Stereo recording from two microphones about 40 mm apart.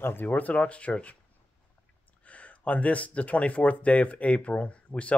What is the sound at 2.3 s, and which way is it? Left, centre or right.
Speech, left.